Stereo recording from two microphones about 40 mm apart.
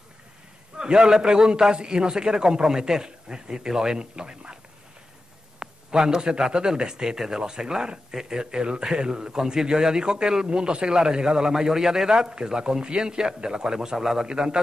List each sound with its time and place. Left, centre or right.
0.7 s a man's voice: centre
5.6 s a sound: centre
6.5 s a man's voice: centre
8.1 s a man's voice: centre
8.5 s a man's voice: right
14.2 s a man's voice: centre